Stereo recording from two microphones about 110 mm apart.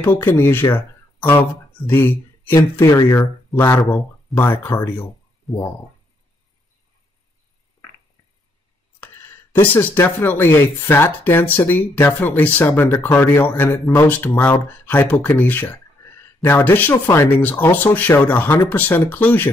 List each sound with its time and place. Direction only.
0.0 s speech: 20° left (ahead or behind)
5.5 s speech: centre (ahead or behind)
9.8 s speech: 20° left (ahead or behind)